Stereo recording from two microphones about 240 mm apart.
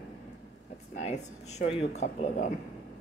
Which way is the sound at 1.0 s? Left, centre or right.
Left.